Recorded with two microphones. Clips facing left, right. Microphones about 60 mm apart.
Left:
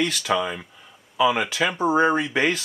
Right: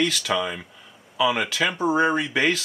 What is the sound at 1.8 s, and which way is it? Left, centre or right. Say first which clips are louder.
Speech: left 2 dB; left.